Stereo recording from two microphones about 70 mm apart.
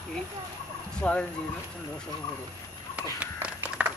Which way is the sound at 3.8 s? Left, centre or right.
Centre.